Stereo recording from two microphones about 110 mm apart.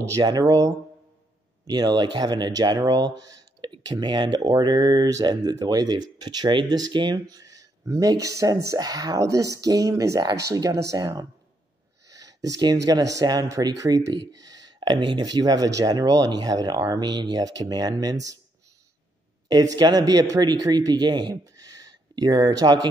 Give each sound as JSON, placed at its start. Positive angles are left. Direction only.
{"t": 0.2, "sound": "speech", "side_deg": -35}
{"t": 19.4, "sound": "speech", "side_deg": -35}